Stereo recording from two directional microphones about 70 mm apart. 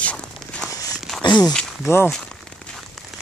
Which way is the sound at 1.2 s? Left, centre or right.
Left.